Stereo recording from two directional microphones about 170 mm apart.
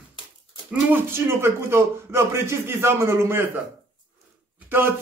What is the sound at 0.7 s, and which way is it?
Speech, 10° right (ahead or behind).